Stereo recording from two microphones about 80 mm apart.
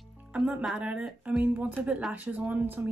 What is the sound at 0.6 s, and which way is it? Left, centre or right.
Speech, centre.